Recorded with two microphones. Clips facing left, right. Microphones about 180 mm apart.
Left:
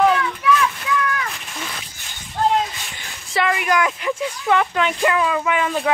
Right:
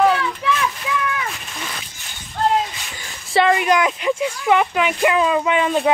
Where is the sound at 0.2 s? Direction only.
30° right (ahead or behind).